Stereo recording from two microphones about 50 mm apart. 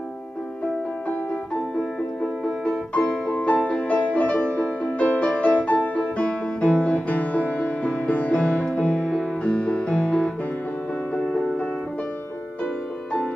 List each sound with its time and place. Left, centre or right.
2.4 s music: centre